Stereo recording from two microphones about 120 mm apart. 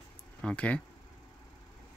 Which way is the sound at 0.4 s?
10° left (ahead or behind).